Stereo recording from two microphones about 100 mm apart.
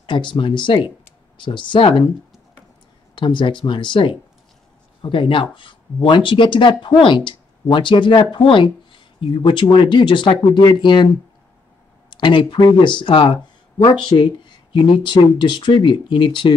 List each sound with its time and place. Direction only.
0.0 s speech: 55° left (ahead or behind)
3.2 s speech: 55° left (ahead or behind)
12.1 s speech: 50° left (ahead or behind)